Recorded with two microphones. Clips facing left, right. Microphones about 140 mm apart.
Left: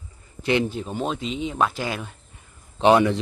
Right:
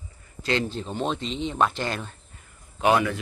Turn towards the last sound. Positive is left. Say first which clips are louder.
# left 5 dB
turn(degrees=25)  # may be behind; listen again after turning